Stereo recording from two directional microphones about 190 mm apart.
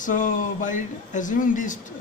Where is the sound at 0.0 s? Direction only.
40° left (ahead or behind).